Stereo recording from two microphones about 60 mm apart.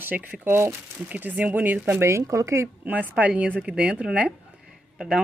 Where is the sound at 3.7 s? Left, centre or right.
Centre.